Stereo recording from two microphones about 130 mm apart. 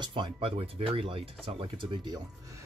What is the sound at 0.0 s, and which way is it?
Speech, 40° right (ahead or behind).